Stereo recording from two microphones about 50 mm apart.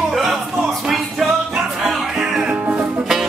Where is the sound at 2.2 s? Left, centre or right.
Centre.